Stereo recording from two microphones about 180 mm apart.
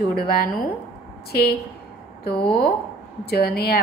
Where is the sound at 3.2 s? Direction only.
60° left (ahead or behind).